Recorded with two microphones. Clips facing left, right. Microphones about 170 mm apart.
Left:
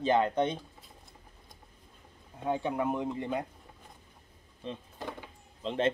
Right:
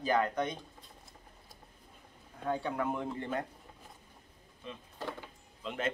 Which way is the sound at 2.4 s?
20° left (ahead or behind).